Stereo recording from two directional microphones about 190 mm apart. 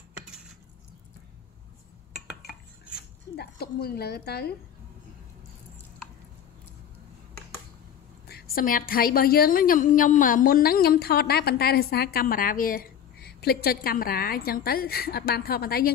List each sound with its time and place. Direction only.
3.3 s a woman's voice: 55° left (ahead or behind)
8.3 s a woman's voice: 50° left (ahead or behind)